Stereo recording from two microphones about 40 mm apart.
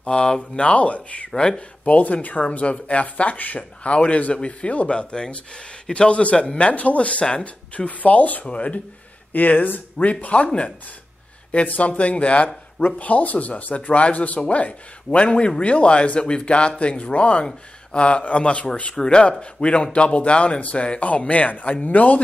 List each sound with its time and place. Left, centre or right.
0.0 s a man's voice: left
6.7 s a man's voice: left